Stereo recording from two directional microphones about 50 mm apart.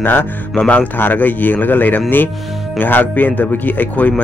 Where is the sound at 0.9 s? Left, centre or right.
Left.